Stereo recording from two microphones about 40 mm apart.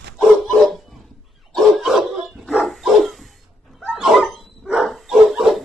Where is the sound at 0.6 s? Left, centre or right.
Centre.